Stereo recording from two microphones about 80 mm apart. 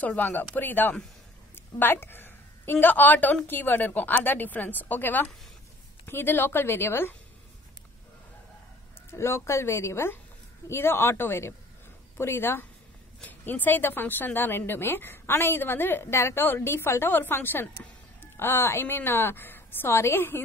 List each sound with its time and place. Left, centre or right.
0.0 s a woman's voice: left
9.1 s speech: left